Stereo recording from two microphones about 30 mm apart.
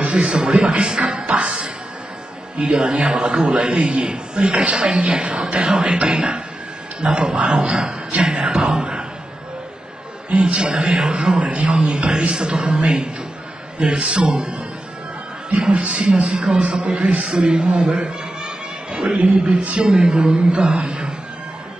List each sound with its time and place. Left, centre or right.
0.0 s a man's voice: right
10.3 s speech: right